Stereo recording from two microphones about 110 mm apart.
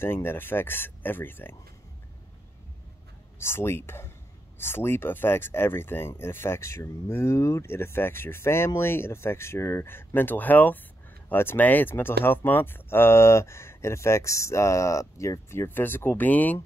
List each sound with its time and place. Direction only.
0.0 s speech: 20° left (ahead or behind)
3.3 s speech: 20° left (ahead or behind)